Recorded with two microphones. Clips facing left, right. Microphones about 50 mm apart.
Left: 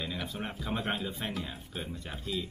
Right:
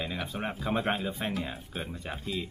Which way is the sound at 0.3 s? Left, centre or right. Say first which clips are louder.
Right 4 dB; right.